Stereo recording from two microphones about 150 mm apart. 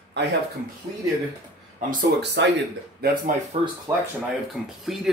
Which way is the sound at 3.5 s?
40° right (ahead or behind).